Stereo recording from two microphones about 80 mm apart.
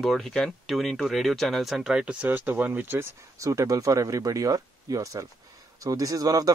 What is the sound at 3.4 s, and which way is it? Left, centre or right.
Speech, right.